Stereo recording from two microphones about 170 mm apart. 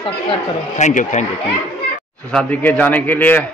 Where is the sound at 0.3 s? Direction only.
45° left (ahead or behind).